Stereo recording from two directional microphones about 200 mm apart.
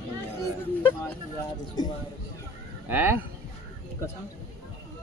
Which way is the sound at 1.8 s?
20° left (ahead or behind).